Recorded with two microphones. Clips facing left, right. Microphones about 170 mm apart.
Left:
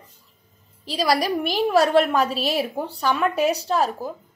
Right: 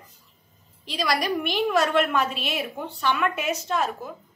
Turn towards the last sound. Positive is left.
turn(degrees=35)  # may be behind; listen again after turning